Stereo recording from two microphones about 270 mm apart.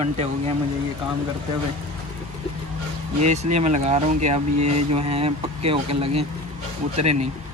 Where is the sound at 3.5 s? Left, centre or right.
Right.